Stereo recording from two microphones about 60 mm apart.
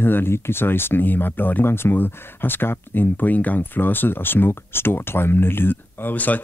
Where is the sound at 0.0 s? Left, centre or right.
Left.